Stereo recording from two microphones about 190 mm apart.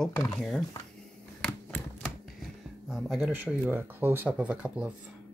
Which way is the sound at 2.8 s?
Centre (ahead or behind).